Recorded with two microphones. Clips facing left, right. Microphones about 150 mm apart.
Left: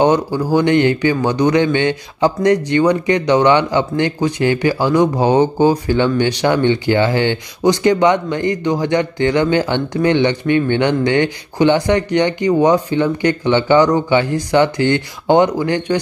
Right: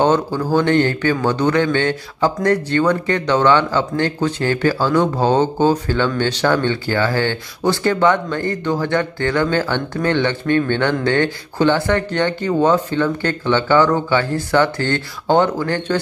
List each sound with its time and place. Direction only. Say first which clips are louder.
0.0 s a man's voice: left 2 dB; 15° left (ahead or behind)